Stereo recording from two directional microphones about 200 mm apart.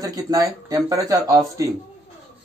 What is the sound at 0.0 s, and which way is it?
Speech, 20° right (ahead or behind).